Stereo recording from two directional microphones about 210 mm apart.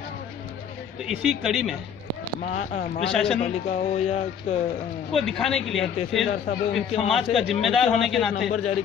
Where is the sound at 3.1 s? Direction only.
5° left (ahead or behind).